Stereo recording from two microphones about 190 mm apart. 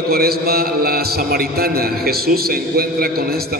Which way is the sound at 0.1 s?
55° right (ahead or behind).